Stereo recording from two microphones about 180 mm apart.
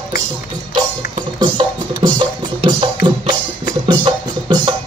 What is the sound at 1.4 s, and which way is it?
Music, 25° right (ahead or behind).